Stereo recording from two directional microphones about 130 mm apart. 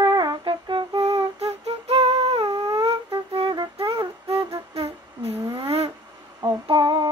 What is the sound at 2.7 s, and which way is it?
Music, 45° right (ahead or behind).